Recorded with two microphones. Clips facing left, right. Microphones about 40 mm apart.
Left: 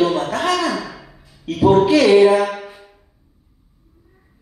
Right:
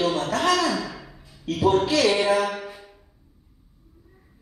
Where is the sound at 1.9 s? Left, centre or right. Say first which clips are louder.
Left 9 dB; centre.